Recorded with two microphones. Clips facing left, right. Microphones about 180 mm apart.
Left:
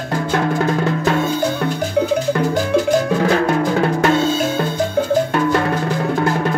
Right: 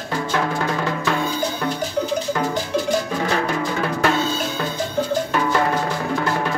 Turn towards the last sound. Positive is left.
turn(degrees=50)  # may be behind; listen again after turning